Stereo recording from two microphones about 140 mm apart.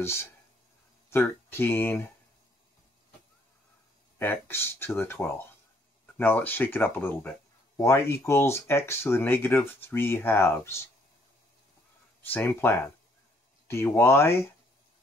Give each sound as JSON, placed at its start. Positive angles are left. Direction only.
{"t": 0.0, "sound": "speech", "side_deg": 15}
{"t": 4.2, "sound": "speech", "side_deg": 15}
{"t": 12.3, "sound": "speech", "side_deg": 15}